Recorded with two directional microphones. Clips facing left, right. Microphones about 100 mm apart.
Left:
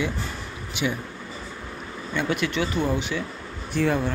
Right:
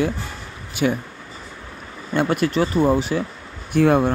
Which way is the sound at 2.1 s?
50° right (ahead or behind).